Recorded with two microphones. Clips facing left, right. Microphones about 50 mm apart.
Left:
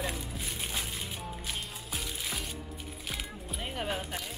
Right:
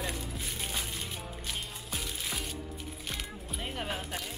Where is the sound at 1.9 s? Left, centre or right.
Centre.